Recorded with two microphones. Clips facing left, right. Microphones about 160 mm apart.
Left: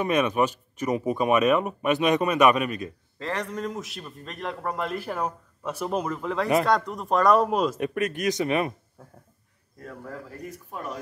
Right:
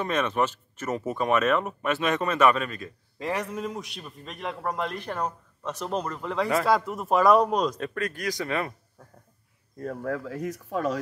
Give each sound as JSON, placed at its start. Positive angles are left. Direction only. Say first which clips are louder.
{"t": 0.0, "sound": "speech", "louder": "left 3 dB", "side_deg": 15}
{"t": 3.2, "sound": "a man's voice", "louder": "right 1 dB", "side_deg": -15}
{"t": 3.4, "sound": "a man's voice", "louder": "left 1 dB", "side_deg": 0}
{"t": 7.8, "sound": "speech", "louder": "left 4 dB", "side_deg": 20}
{"t": 10.0, "sound": "speech", "louder": "right 8 dB", "side_deg": -85}